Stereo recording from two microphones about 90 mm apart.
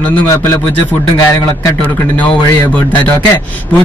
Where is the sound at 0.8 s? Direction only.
25° left (ahead or behind).